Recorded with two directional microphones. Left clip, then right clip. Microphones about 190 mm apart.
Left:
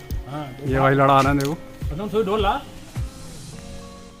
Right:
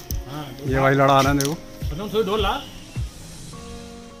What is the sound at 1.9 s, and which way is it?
Speech, 50° left (ahead or behind).